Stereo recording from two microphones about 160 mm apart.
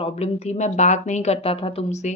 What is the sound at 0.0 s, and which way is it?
Speech, 40° left (ahead or behind).